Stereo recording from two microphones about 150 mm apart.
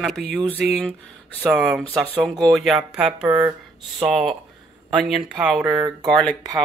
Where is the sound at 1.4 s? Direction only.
10° right (ahead or behind).